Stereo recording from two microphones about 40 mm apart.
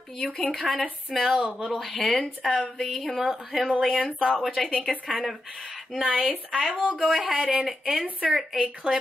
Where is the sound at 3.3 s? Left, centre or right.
Centre.